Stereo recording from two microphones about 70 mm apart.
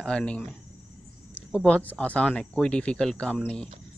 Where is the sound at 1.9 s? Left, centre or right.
Centre.